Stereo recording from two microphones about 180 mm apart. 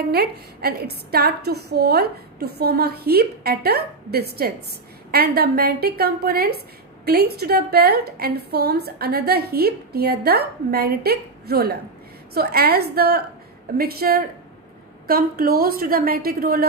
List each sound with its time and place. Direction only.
0.1 s a woman's voice: 60° right (ahead or behind)